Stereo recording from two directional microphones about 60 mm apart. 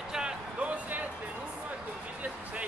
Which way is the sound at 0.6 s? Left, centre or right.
Right.